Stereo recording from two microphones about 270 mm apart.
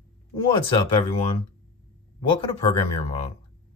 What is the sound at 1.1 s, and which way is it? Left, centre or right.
Speech, left.